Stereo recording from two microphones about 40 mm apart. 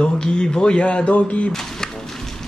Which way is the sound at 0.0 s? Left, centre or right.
Left.